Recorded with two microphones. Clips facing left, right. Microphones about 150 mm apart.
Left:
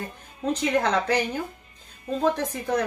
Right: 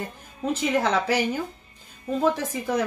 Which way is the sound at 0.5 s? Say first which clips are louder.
Even; 5° right (ahead or behind).